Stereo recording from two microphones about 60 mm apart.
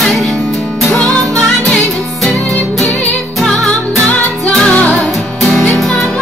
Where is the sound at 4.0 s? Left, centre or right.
Left.